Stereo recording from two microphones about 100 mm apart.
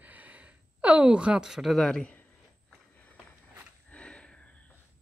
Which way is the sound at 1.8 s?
10° left (ahead or behind).